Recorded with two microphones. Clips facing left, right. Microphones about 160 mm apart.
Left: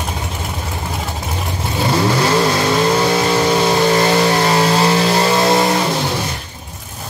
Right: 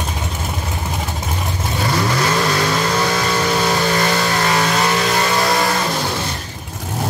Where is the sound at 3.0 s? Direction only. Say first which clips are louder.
Left 4 dB; 25° left (ahead or behind).